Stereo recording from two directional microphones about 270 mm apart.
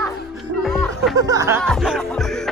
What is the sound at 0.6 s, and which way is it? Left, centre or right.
Music, centre.